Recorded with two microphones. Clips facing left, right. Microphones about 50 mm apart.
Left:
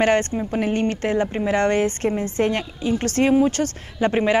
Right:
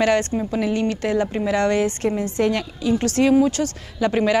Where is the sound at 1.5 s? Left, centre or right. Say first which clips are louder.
Even; left.